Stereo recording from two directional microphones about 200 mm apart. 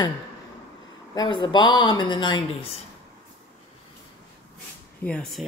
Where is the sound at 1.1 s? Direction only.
25° left (ahead or behind).